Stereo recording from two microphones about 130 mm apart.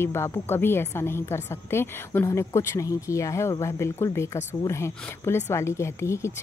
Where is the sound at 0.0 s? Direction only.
20° left (ahead or behind).